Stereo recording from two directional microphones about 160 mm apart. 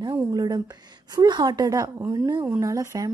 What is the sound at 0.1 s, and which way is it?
A woman's voice, 20° right (ahead or behind).